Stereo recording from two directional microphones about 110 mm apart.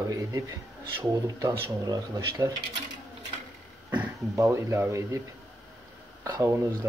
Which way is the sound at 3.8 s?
15° right (ahead or behind).